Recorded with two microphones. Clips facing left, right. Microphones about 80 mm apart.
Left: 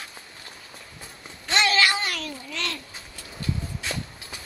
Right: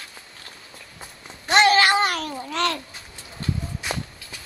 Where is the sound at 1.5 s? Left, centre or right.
Right.